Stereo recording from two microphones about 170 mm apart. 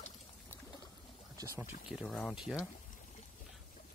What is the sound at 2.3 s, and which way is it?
Speech, 5° right (ahead or behind).